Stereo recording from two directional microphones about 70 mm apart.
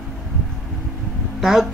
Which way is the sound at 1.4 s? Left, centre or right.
Centre.